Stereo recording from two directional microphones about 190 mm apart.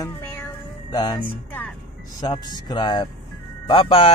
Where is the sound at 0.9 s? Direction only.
20° left (ahead or behind).